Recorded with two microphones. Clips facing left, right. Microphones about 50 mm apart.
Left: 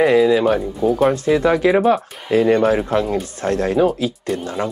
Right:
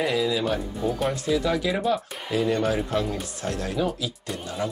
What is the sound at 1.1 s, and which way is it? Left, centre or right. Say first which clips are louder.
Speech: left 8 dB; left.